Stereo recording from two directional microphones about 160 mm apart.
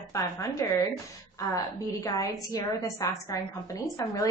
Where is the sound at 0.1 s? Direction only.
20° left (ahead or behind).